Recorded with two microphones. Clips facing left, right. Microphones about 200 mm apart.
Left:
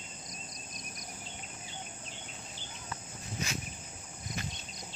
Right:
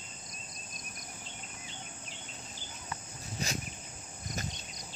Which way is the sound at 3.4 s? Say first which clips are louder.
Right 1 dB; 35° right (ahead or behind).